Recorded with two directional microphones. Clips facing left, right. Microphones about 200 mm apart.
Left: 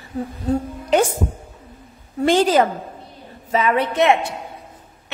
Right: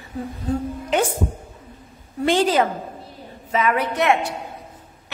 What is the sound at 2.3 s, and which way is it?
Speech, 40° left (ahead or behind).